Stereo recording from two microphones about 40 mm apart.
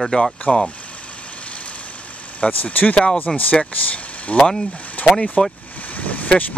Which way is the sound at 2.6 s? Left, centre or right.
Left.